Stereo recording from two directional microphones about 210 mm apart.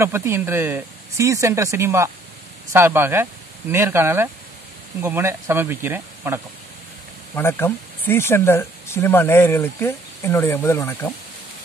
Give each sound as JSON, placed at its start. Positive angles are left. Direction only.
{"t": 0.0, "sound": "speech", "side_deg": -10}
{"t": 7.3, "sound": "speech", "side_deg": 10}